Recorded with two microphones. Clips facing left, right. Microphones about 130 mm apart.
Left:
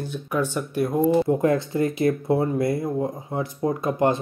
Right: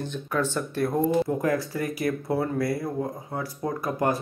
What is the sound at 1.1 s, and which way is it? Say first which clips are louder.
Speech: left 4 dB; 25° left (ahead or behind).